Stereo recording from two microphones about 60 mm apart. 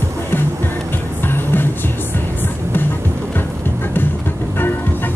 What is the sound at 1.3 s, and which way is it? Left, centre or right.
Music, left.